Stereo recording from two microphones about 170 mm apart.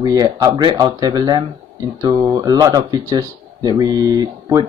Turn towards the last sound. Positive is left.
turn(degrees=-25)  # may be behind; listen again after turning